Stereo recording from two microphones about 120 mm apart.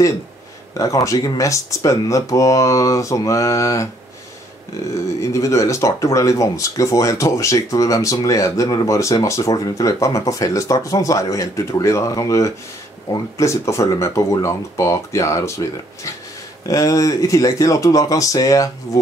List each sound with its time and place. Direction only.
0.7 s speech: 30° left (ahead or behind)
4.9 s speech: 25° left (ahead or behind)